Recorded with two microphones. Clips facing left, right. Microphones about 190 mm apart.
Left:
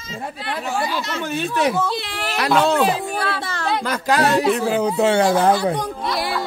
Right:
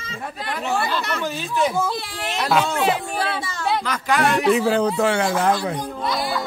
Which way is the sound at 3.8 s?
40° left (ahead or behind).